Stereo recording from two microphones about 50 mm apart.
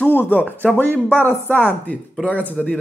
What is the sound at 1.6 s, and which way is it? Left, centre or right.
Speech, left.